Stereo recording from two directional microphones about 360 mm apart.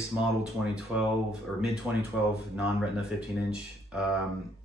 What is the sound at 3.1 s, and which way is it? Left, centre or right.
Speech, centre.